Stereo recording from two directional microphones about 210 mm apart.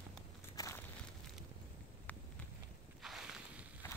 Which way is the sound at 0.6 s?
15° left (ahead or behind).